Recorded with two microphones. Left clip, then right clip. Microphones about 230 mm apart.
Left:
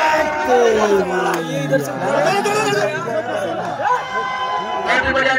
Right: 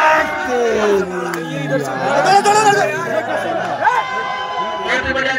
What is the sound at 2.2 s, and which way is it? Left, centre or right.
Speech, centre.